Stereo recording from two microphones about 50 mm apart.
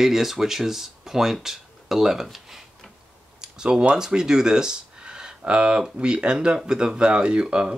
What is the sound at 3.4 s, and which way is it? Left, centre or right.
Speech, centre.